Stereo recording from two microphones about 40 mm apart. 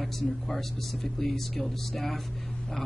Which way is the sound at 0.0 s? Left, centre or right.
Centre.